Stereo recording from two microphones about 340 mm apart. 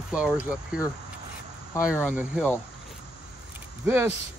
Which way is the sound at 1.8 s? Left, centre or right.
Centre.